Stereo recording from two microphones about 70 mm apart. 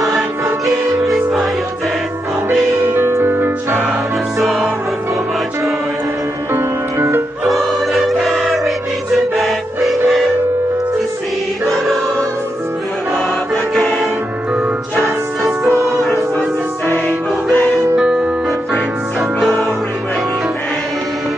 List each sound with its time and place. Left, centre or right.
0.7 s music: centre
2.9 s music: right
4.4 s music: centre
6.5 s music: right
7.4 s music: centre
11.6 s choir: centre
17.9 s music: centre